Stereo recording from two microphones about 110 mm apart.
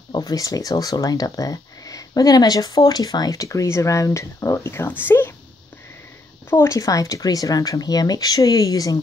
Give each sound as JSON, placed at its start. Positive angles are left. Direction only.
{"t": 0.1, "sound": "speech", "side_deg": 35}
{"t": 6.5, "sound": "speech", "side_deg": 25}